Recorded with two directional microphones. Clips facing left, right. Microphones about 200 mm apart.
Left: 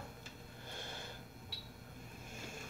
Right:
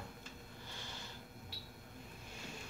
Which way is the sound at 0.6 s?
55° left (ahead or behind).